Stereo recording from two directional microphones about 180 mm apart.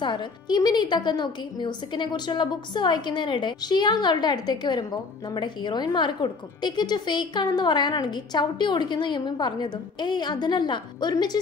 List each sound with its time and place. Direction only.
0.0 s a woman's voice: 25° left (ahead or behind)